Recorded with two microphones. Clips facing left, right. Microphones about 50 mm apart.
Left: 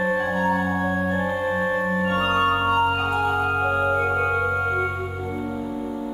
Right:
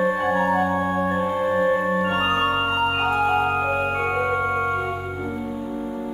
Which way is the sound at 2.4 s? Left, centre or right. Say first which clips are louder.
Left 2 dB; centre.